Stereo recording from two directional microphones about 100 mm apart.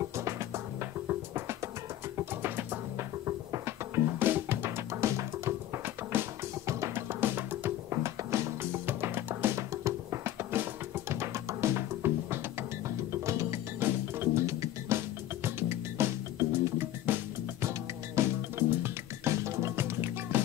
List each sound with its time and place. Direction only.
0.0 s music: 30° right (ahead or behind)